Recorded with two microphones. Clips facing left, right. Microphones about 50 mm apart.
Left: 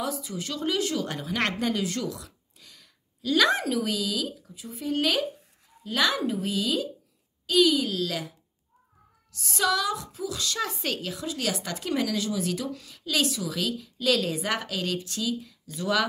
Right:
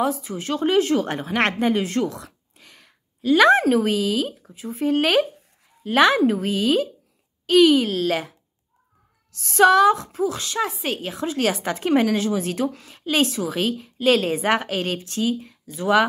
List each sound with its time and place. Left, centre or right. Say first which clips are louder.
0.0 s a woman's voice: right 8 dB; right
7.8 s speech: right 7 dB; right
9.4 s a woman's voice: right 12 dB; right